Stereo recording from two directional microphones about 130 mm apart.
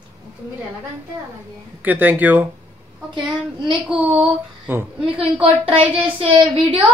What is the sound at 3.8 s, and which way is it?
Speech, 5° right (ahead or behind).